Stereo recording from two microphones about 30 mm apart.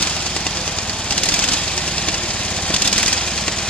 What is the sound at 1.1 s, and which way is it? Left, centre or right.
Vehicle, left.